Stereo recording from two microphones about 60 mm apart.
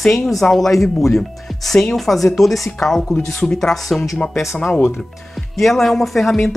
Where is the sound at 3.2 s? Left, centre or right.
Left.